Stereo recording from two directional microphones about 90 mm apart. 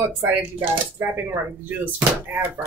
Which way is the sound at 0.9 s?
25° right (ahead or behind).